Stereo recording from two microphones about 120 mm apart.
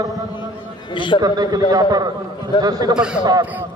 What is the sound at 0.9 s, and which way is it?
Speech, 40° left (ahead or behind).